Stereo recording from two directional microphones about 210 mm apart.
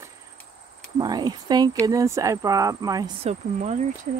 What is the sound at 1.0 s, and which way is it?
Speech, 20° right (ahead or behind).